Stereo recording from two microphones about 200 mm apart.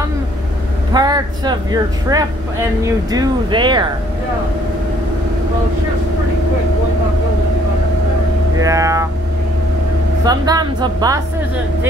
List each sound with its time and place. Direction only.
0.9 s speech: 20° right (ahead or behind)
8.5 s speech: 15° right (ahead or behind)
10.2 s speech: 20° right (ahead or behind)